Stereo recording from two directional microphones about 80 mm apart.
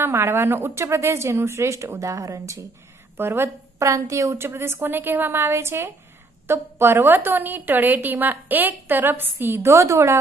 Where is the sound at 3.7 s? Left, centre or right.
Right.